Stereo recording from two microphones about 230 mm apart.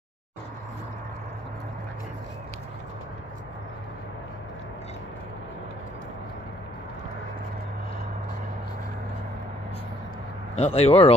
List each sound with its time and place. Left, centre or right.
10.5 s speech: left